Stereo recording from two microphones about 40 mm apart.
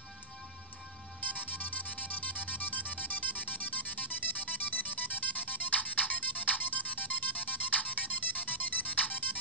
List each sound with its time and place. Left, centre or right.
1.2 s music: left